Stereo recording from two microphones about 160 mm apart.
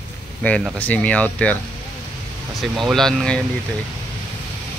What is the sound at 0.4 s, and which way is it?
Speech, 5° left (ahead or behind).